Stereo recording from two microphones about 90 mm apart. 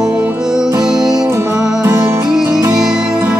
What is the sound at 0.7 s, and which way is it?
Music, 50° right (ahead or behind).